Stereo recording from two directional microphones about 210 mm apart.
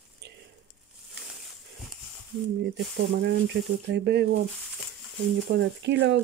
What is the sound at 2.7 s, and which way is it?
Speech, 55° right (ahead or behind).